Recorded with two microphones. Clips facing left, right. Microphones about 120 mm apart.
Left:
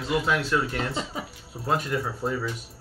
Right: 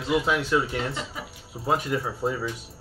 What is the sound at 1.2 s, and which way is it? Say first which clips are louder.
Speech: left 3 dB; 25° left (ahead or behind).